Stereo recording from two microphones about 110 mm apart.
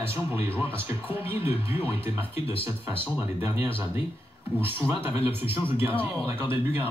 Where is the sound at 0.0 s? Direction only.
20° right (ahead or behind).